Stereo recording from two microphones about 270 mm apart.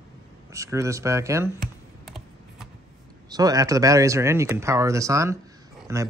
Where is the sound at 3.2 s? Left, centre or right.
Centre.